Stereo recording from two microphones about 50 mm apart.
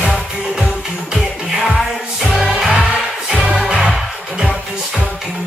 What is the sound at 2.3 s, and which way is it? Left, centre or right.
Music, centre.